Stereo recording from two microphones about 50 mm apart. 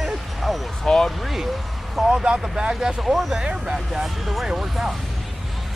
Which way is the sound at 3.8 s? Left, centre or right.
Centre.